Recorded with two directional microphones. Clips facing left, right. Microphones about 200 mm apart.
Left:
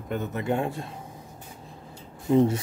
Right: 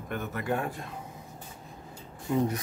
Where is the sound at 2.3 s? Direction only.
30° left (ahead or behind).